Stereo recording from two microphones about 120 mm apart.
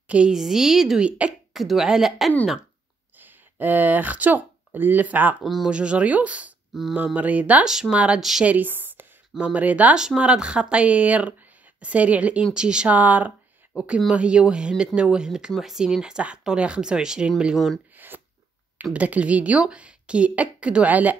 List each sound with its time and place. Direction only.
0.1 s speech: 5° right (ahead or behind)
3.2 s speech: 15° right (ahead or behind)
5.4 s speech: centre (ahead or behind)
17.9 s a sound: 15° right (ahead or behind)
18.9 s speech: 10° right (ahead or behind)